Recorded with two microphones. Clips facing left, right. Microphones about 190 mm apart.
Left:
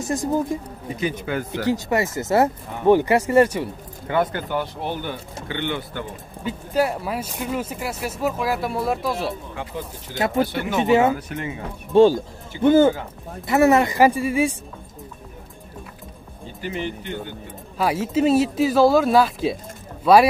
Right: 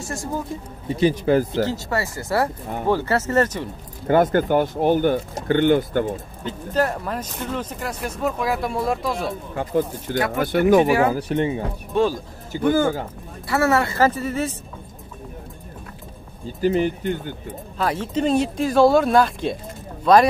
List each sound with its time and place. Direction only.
0.0 s speech: 20° left (ahead or behind)
0.9 s a man's voice: 35° right (ahead or behind)
1.5 s speech: 15° left (ahead or behind)
4.1 s speech: 45° right (ahead or behind)
6.4 s speech: 10° left (ahead or behind)
9.6 s speech: 50° right (ahead or behind)
10.1 s speech: 25° left (ahead or behind)
10.4 s speech: 50° right (ahead or behind)
10.8 s speech: 20° left (ahead or behind)
11.1 s a man's voice: 35° right (ahead or behind)
11.9 s speech: 30° left (ahead or behind); by 14.5 s 10° left (ahead or behind)
16.6 s speech: 45° right (ahead or behind)
17.7 s speech: 10° left (ahead or behind)